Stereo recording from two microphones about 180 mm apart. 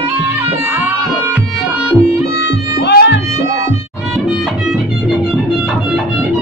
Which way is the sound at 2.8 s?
70° left (ahead or behind).